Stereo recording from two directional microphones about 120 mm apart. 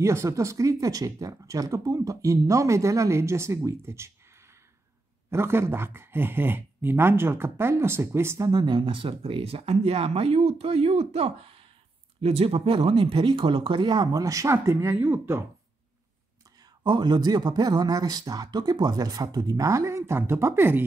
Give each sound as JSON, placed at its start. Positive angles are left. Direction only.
{"t": 0.0, "sound": "speech", "side_deg": -25}
{"t": 5.3, "sound": "speech", "side_deg": -20}
{"t": 8.5, "sound": "speech", "side_deg": -35}
{"t": 16.8, "sound": "speech", "side_deg": -40}